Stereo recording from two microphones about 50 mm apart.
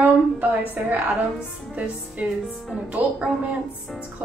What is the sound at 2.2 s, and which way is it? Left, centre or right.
A woman's voice, right.